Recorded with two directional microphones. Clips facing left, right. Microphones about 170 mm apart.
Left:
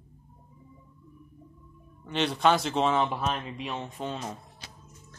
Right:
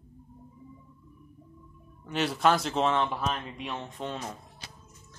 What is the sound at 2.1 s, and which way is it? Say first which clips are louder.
A man's voice: left 1 dB; 5° right (ahead or behind).